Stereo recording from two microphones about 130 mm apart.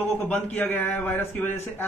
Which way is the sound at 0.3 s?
15° left (ahead or behind).